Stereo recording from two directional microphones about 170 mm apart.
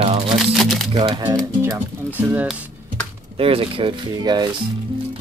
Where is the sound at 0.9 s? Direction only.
25° right (ahead or behind).